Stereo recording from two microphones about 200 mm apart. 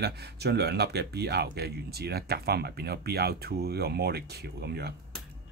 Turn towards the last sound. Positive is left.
turn(degrees=-55)  # may be behind; listen again after turning